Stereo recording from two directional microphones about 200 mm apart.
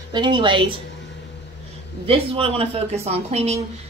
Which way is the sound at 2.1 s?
30° right (ahead or behind).